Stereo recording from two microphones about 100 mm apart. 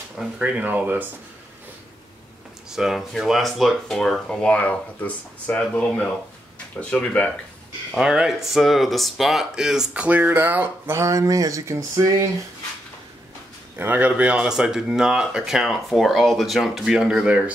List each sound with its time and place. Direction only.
0.4 s speech: 15° right (ahead or behind)
2.7 s speech: 5° right (ahead or behind); by 7.3 s 10° left (ahead or behind)
7.9 s speech: 5° right (ahead or behind); by 12.2 s 30° right (ahead or behind)
13.7 s speech: 15° right (ahead or behind)